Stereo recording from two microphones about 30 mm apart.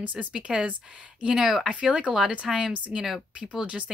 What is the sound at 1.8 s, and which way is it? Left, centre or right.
Speech, right.